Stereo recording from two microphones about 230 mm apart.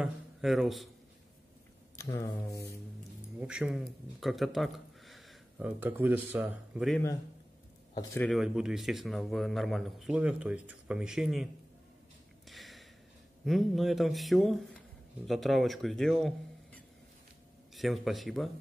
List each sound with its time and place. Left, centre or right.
0.0 s a sound: centre
2.0 s speech: centre
2.5 s music: left
3.3 s speech: centre
7.9 s speech: centre
8.3 s speech: centre
12.4 s a sound: centre
13.5 s speech: centre